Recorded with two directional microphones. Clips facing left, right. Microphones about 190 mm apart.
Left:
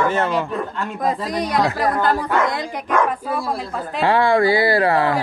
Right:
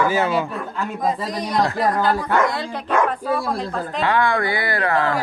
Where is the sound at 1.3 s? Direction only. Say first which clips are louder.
Left 2 dB; 70° left (ahead or behind).